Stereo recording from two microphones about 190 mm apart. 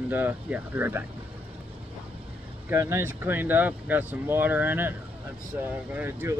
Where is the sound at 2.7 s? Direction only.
10° right (ahead or behind).